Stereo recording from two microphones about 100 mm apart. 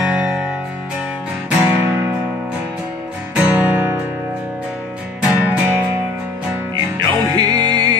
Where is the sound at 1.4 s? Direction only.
10° right (ahead or behind).